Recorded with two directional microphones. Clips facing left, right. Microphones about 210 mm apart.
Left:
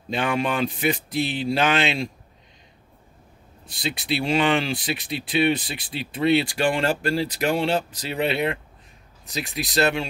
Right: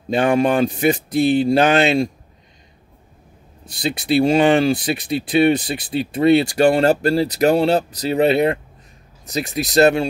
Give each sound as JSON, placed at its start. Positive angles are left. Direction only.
{"t": 0.1, "sound": "speech", "side_deg": -45}
{"t": 3.8, "sound": "speech", "side_deg": -45}